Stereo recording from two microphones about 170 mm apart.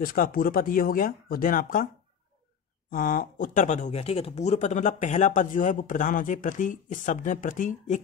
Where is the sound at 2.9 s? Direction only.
55° left (ahead or behind).